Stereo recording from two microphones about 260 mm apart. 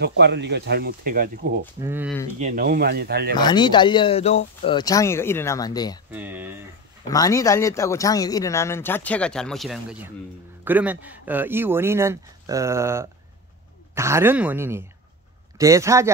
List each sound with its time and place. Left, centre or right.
0.0 s speech: right
1.8 s speech: centre
2.3 s speech: right
3.3 s speech: centre
6.1 s speech: centre
7.1 s speech: centre